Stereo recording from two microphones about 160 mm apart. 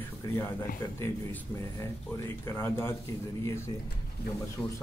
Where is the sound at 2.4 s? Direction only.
15° left (ahead or behind).